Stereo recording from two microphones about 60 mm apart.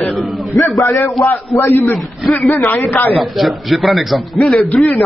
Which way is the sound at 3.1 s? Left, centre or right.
Centre.